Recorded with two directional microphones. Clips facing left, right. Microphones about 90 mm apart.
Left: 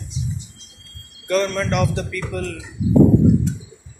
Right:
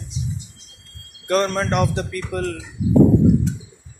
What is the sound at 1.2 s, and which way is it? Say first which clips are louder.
A man's voice: even; 45° right (ahead or behind).